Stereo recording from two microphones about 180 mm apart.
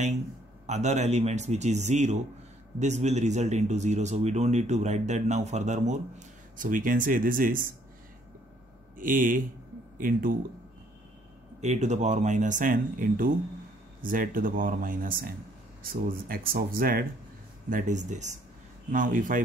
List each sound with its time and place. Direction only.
0.7 s a man's voice: 40° right (ahead or behind)
8.9 s speech: 50° right (ahead or behind)
11.6 s a man's voice: 40° right (ahead or behind)